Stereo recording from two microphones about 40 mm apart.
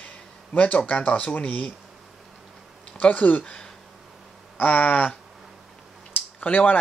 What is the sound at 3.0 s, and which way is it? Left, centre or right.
Speech, left.